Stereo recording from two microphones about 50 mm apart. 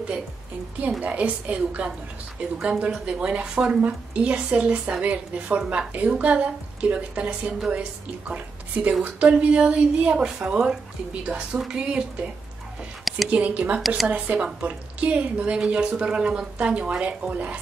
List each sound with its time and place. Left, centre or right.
1.0 s speech: right
13.3 s speech: right
13.7 s a woman's voice: centre
14.0 s speech: right
15.6 s speech: centre